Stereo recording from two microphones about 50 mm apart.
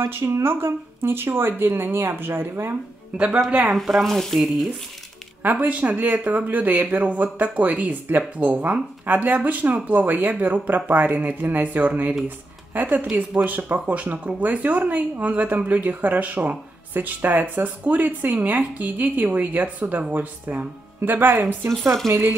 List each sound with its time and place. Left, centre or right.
0.0 s speech: right
3.2 s speech: right
4.0 s sizzle: centre
5.4 s speech: right
22.0 s speech: centre